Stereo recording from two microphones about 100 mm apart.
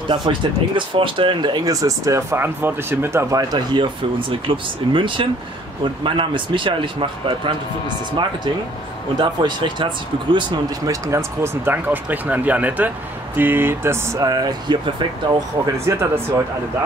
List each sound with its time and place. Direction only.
0.1 s speech: 50° right (ahead or behind); by 3.6 s 35° right (ahead or behind)
3.7 s speech: 55° right (ahead or behind)
9.2 s speech: 50° right (ahead or behind)
10.9 s speech: 30° right (ahead or behind)
14.2 s speech: 40° right (ahead or behind)
15.8 s speech: 25° right (ahead or behind)